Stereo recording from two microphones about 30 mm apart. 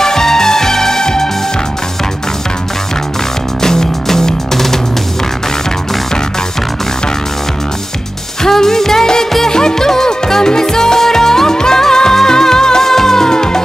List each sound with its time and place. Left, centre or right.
0.0 s music: centre
3.6 s music: centre
8.4 s music: centre